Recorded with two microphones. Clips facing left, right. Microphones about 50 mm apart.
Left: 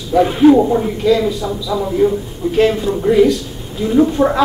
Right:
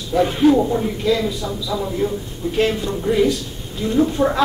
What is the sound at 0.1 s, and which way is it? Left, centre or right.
Speech, centre.